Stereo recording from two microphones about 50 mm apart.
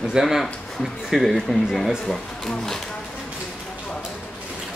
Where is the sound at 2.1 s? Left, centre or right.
Centre.